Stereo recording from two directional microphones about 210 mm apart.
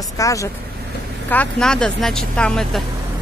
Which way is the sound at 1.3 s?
5° left (ahead or behind).